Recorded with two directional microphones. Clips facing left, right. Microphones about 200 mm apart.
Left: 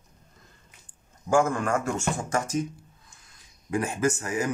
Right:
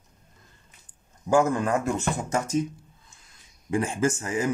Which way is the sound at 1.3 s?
20° right (ahead or behind).